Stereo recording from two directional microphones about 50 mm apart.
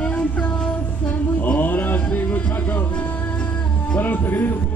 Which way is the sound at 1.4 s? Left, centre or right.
Left.